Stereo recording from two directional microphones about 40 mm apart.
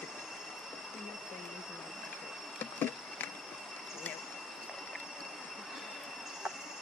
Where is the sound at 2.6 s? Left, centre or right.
Left.